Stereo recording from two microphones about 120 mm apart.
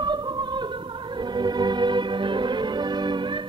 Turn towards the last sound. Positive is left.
turn(degrees=-40)  # may be behind; listen again after turning